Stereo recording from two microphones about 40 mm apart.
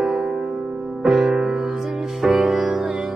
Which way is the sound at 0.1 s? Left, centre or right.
Centre.